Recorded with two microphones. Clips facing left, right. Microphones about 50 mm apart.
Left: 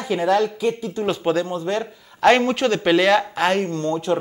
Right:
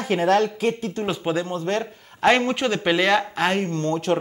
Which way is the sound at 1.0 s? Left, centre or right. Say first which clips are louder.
Left 4 dB; centre.